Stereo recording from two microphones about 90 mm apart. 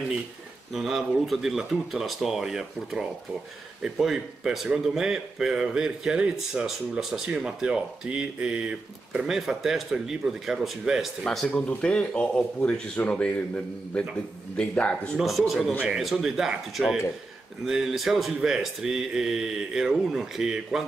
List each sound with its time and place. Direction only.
0.7 s a man's voice: centre (ahead or behind)
11.2 s speech: 15° left (ahead or behind)
15.1 s speech: centre (ahead or behind)